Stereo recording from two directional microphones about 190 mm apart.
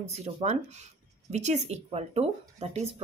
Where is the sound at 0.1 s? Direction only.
35° right (ahead or behind).